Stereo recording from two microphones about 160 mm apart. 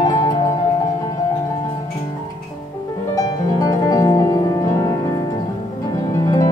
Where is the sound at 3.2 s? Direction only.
20° left (ahead or behind).